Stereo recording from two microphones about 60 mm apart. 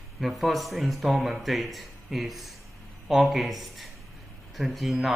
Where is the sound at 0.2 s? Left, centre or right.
Centre.